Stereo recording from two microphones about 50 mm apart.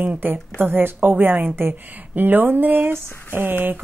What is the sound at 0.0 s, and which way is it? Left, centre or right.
A woman's voice, right.